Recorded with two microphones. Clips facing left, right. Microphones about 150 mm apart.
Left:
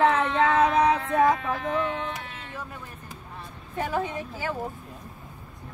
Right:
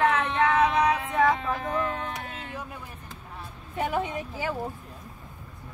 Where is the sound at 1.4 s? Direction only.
30° right (ahead or behind).